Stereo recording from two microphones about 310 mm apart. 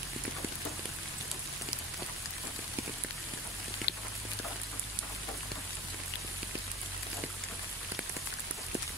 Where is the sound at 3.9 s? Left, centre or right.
Left.